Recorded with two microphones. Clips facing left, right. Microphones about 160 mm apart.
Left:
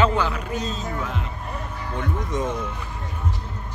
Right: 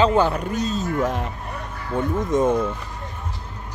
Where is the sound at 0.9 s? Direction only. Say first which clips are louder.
Right 7 dB; 50° right (ahead or behind).